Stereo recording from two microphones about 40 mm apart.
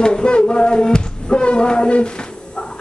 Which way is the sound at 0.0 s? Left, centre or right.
Left.